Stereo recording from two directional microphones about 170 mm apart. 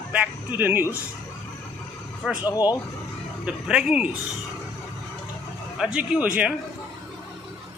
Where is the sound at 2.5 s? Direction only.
25° left (ahead or behind).